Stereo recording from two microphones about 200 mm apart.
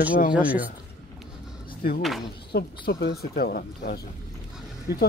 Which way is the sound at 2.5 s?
55° left (ahead or behind).